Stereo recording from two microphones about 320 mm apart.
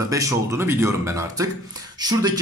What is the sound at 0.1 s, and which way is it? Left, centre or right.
Speech, centre.